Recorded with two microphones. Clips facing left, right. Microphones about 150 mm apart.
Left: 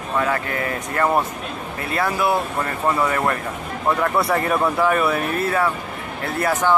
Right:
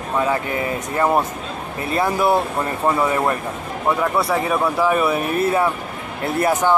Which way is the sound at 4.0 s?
5° right (ahead or behind).